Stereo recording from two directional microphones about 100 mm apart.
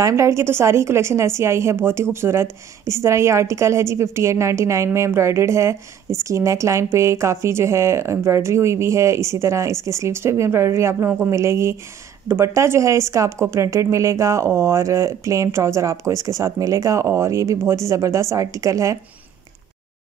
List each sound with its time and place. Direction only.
0.0 s a woman's voice: 30° right (ahead or behind)